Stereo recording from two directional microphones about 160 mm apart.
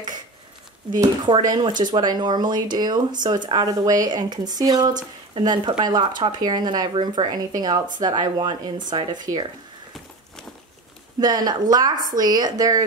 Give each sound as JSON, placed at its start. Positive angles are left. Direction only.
{"t": 0.8, "sound": "a woman's voice", "side_deg": -25}
{"t": 11.1, "sound": "a woman's voice", "side_deg": -25}